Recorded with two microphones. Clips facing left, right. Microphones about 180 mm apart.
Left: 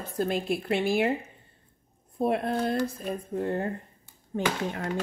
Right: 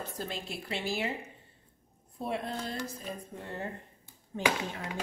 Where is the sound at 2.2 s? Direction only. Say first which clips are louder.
Left 9 dB; 60° left (ahead or behind).